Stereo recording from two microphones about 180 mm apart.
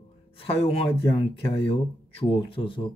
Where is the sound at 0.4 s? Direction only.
30° left (ahead or behind).